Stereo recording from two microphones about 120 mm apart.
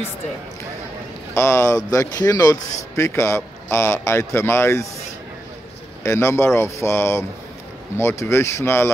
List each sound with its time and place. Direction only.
1.3 s speech: 20° left (ahead or behind)
6.0 s speech: 25° left (ahead or behind)